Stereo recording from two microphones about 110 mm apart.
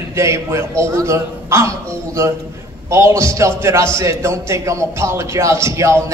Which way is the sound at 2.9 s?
25° right (ahead or behind).